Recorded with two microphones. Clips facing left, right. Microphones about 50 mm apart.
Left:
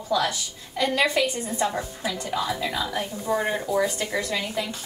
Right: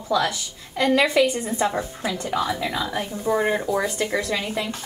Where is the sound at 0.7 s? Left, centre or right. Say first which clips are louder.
Right 4 dB; right.